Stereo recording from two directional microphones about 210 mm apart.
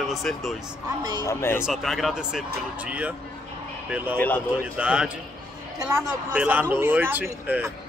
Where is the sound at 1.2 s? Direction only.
10° left (ahead or behind).